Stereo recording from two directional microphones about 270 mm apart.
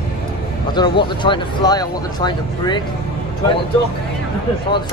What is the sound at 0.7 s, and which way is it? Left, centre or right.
Speech, centre.